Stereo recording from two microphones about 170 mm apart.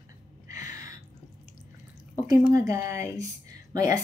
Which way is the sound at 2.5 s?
20° right (ahead or behind).